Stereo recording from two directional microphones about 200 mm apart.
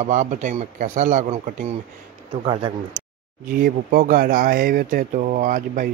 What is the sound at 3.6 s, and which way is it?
Speech, 45° right (ahead or behind).